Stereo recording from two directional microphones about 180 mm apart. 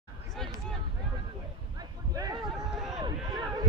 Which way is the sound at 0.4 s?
Centre (ahead or behind).